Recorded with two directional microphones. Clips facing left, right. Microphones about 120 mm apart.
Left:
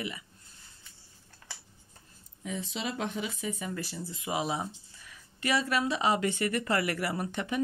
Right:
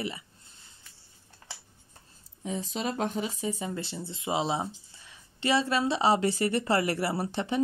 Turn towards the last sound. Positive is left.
turn(degrees=-30)  # may be behind; listen again after turning